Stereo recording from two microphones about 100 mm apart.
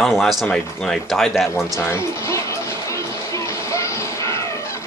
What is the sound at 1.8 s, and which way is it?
Music, 25° left (ahead or behind).